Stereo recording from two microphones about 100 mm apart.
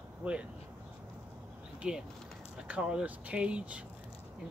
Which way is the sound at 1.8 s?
10° right (ahead or behind).